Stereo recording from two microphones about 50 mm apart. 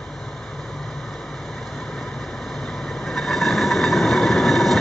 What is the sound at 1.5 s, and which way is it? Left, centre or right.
Vehicle, centre.